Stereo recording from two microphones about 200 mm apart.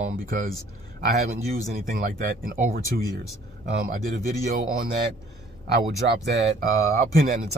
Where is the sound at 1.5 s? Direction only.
50° right (ahead or behind).